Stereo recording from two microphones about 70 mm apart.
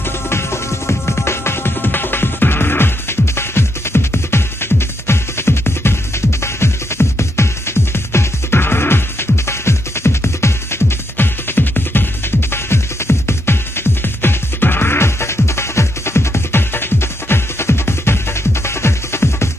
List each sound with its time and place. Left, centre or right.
0.3 s music: left